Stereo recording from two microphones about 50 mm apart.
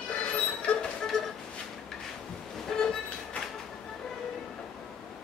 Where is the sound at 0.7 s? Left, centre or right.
Left.